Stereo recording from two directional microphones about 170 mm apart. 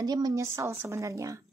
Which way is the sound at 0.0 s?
25° right (ahead or behind).